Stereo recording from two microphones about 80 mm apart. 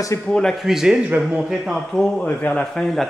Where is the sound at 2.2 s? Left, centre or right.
Centre.